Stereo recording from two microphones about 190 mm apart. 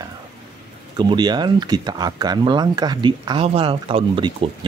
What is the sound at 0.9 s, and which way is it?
Speech, 20° right (ahead or behind).